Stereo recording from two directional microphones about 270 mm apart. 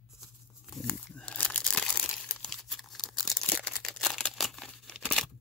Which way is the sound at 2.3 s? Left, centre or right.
Centre.